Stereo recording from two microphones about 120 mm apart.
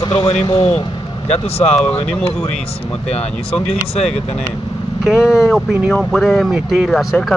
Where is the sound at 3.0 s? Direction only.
60° left (ahead or behind).